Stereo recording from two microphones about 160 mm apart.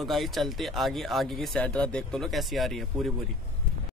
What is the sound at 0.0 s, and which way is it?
Speech, centre (ahead or behind).